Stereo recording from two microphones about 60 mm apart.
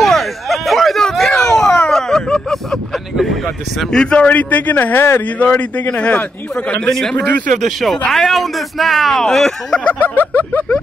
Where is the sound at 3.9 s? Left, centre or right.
Centre.